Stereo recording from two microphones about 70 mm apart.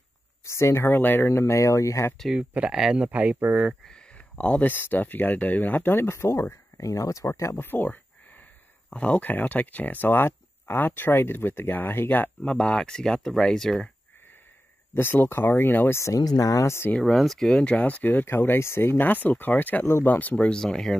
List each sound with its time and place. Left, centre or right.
0.5 s speech: left
1.4 s speech: left
2.3 s speech: centre
3.8 s speech: centre
12.4 s speech: centre
15.0 s speech: left
16.2 s speech: left
17.0 s speech: centre
17.5 s speech: centre
18.0 s speech: left; by 20.9 s centre